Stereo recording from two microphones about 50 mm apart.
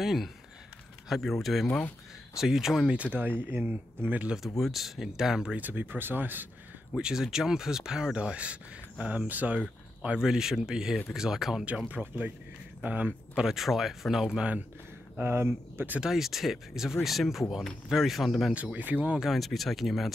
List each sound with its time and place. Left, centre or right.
0.0 s speech: centre
3.1 s speech: right
4.6 s speech: centre
5.6 s speech: right
7.0 s speech: centre; by 9.6 s right
10.0 s speech: centre
11.9 s speech: right
13.4 s speech: centre
15.1 s speech: right
16.0 s speech: centre
18.5 s speech: right
19.2 s speech: centre